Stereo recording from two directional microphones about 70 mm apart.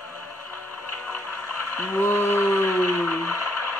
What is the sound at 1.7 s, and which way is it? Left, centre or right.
Whale vocalization, left.